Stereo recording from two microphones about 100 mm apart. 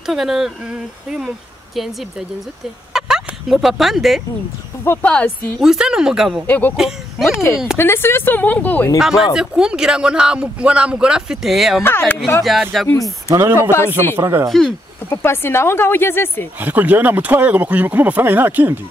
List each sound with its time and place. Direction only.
0.0 s speech: 5° right (ahead or behind)
2.9 s speech: 5° right (ahead or behind)
4.8 s speech: 25° left (ahead or behind)
5.6 s speech: 5° right (ahead or behind)
6.4 s speech: 15° left (ahead or behind)
7.2 s speech: 30° left (ahead or behind)
9.0 s speech: 5° right (ahead or behind)
11.8 s speech: 20° left (ahead or behind)
12.4 s speech: centre (ahead or behind)
13.3 s speech: 25° right (ahead or behind)
13.6 s speech: 25° left (ahead or behind)
14.1 s speech: 25° right (ahead or behind)
15.0 s speech: 25° left (ahead or behind)
16.5 s speech: 15° right (ahead or behind)